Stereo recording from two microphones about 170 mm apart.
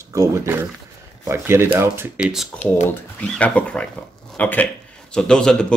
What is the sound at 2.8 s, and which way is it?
Speech, 10° left (ahead or behind).